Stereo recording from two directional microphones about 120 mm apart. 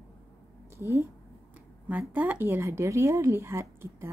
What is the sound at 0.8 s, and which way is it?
A woman's voice, 20° right (ahead or behind).